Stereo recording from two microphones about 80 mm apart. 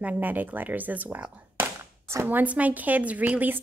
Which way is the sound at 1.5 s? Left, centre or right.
Right.